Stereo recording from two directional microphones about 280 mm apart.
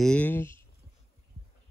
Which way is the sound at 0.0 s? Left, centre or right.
Centre.